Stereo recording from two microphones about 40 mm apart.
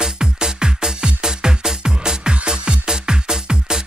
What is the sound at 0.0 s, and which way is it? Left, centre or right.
Music, centre.